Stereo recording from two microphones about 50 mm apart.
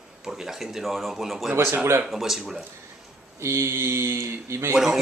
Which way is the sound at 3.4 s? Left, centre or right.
Right.